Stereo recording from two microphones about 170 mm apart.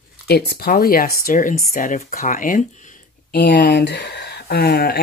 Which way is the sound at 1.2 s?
50° left (ahead or behind).